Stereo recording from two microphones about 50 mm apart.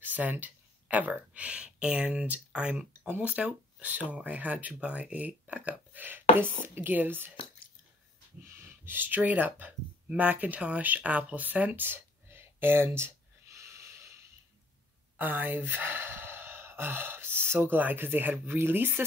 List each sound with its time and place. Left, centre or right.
0.0 s speech: right
8.5 s speech: right
10.0 s a sound: right
15.1 s speech: right